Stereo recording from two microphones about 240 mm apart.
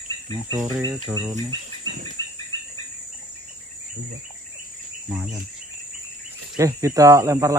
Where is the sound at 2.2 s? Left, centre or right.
Centre.